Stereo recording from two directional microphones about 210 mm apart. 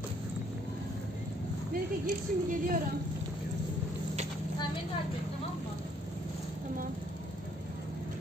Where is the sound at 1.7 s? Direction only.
40° right (ahead or behind).